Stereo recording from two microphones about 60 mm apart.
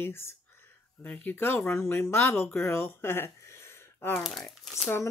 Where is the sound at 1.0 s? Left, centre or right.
Left.